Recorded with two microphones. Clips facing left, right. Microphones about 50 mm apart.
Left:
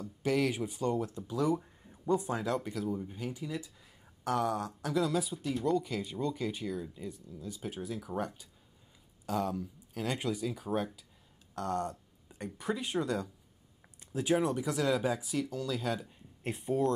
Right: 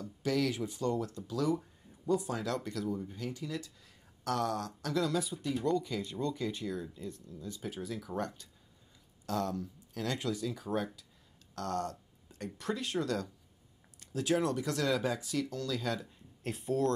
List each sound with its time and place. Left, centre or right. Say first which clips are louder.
0.0 s speech: left 2 dB; centre
11.5 s a sound: left 2 dB; centre
12.5 s speech: left 1 dB; centre